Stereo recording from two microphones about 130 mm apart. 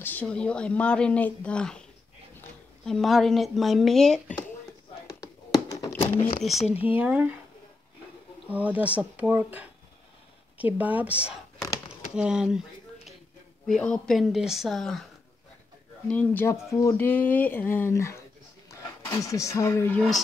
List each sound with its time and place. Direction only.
0.0 s speech: 10° left (ahead or behind)
5.0 s a sound: 25° left (ahead or behind); by 6.3 s 45° left (ahead or behind)
6.9 s speech: 10° right (ahead or behind)
8.5 s speech: 10° right (ahead or behind)
13.7 s speech: 5° left (ahead or behind)
16.1 s speech: 10° left (ahead or behind)
16.4 s speech: 20° left (ahead or behind)